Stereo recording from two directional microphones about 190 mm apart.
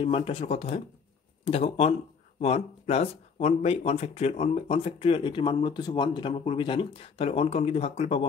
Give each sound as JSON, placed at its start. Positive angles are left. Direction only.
{"t": 0.0, "sound": "speech", "side_deg": 30}